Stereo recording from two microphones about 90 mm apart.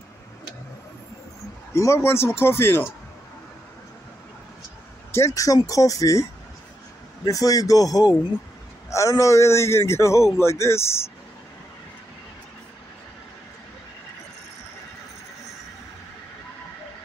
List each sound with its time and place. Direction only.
1.7 s speech: 30° left (ahead or behind)
5.1 s a man's voice: 35° left (ahead or behind)
7.2 s a man's voice: 40° left (ahead or behind)